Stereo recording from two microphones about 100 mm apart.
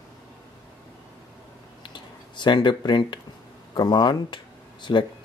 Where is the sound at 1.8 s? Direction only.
50° left (ahead or behind).